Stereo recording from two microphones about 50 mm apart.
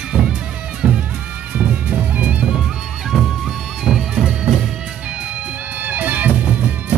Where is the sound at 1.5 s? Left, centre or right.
Right.